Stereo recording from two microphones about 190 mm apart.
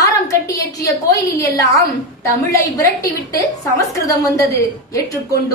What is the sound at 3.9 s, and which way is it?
A woman's voice, 15° left (ahead or behind).